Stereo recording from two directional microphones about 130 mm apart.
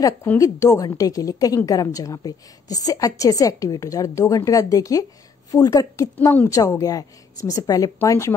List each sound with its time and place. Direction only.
0.4 s a woman's voice: 25° left (ahead or behind)